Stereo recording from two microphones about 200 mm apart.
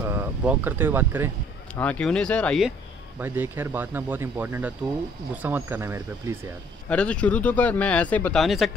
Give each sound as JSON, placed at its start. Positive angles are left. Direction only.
{"t": 0.0, "sound": "speech", "side_deg": -10}
{"t": 1.8, "sound": "speech", "side_deg": 5}
{"t": 3.2, "sound": "speech", "side_deg": -10}
{"t": 6.9, "sound": "speech", "side_deg": 5}